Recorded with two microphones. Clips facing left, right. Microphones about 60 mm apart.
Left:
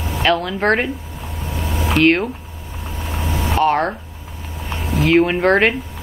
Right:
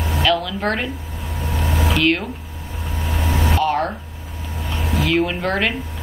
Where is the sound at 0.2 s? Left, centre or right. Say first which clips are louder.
Left 3 dB; left.